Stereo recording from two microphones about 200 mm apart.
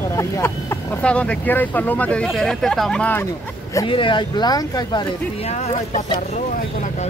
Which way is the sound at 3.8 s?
25° left (ahead or behind).